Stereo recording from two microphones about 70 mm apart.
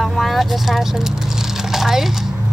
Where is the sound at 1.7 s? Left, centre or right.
Centre.